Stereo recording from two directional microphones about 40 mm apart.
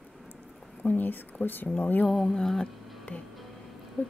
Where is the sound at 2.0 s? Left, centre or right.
Centre.